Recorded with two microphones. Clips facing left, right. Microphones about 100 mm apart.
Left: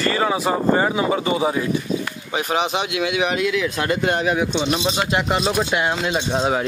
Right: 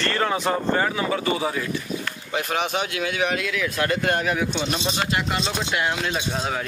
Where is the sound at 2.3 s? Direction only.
10° left (ahead or behind).